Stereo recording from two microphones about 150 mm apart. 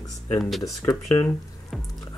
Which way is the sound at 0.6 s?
20° left (ahead or behind).